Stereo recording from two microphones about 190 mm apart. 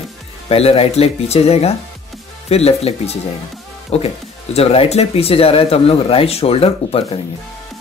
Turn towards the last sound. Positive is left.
turn(degrees=30)  # may be behind; listen again after turning